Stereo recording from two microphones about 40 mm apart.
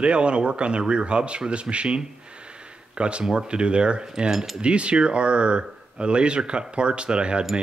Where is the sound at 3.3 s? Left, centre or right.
Right.